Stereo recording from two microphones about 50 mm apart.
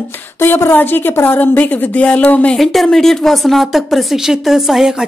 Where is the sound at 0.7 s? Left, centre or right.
Left.